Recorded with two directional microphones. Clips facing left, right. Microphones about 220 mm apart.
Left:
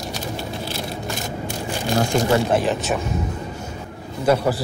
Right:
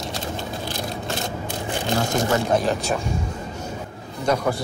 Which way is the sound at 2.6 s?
Centre (ahead or behind).